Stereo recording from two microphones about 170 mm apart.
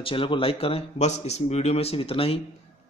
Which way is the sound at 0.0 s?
30° left (ahead or behind).